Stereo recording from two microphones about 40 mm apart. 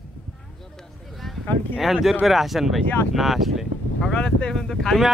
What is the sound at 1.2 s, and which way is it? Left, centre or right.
Speech, centre.